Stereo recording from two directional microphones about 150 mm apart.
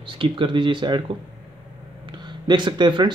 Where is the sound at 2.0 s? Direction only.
30° right (ahead or behind).